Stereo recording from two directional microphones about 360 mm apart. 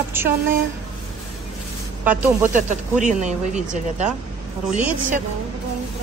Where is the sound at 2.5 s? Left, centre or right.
Centre.